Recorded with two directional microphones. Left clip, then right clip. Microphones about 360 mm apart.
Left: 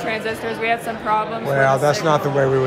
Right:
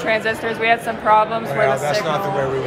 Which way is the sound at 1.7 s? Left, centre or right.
Centre.